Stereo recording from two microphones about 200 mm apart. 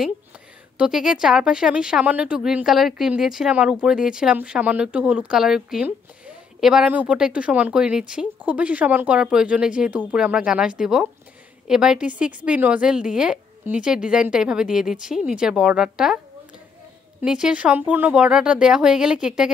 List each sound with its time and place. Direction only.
0.7 s speech: 5° right (ahead or behind)
17.2 s speech: 5° right (ahead or behind)